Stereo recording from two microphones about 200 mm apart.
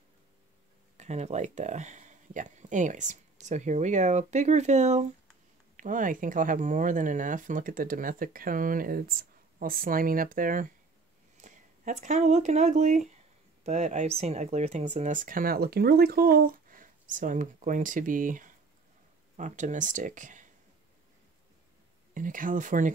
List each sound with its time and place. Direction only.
0.9 s speech: 35° right (ahead or behind)
22.1 s speech: 40° right (ahead or behind)